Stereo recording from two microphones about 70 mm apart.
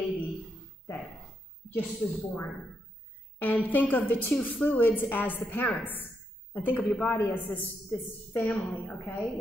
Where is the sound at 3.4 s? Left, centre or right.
Left.